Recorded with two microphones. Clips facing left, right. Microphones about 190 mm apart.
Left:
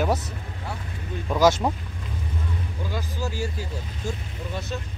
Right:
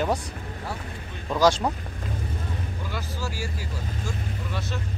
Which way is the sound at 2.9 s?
20° left (ahead or behind).